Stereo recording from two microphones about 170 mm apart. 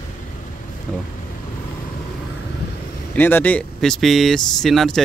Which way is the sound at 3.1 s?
10° left (ahead or behind).